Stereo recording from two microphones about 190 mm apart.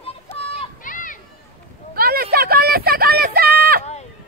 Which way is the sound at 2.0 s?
55° right (ahead or behind).